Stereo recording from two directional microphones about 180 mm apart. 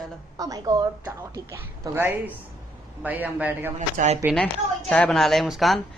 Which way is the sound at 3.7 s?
40° right (ahead or behind).